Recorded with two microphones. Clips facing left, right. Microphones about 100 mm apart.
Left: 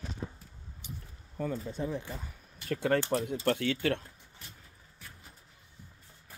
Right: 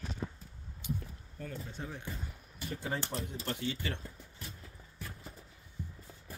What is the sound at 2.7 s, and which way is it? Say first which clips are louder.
Speech: left 10 dB; 80° left.